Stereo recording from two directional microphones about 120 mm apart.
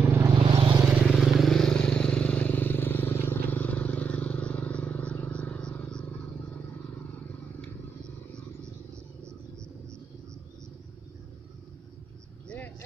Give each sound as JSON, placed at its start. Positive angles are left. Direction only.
{"t": 0.0, "sound": "vehicle", "side_deg": -20}
{"t": 0.5, "sound": "vehicle", "side_deg": -35}
{"t": 0.8, "sound": "vehicle", "side_deg": -5}
{"t": 12.4, "sound": "vehicle", "side_deg": 15}